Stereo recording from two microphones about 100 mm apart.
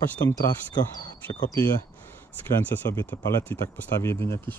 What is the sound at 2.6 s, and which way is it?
Speech, 20° left (ahead or behind).